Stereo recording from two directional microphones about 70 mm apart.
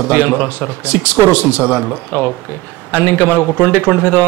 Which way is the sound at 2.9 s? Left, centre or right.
Left.